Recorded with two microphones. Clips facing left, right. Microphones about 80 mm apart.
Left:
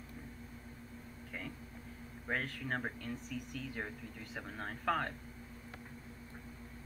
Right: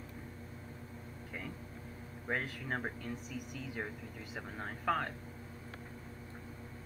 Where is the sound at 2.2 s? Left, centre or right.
Centre.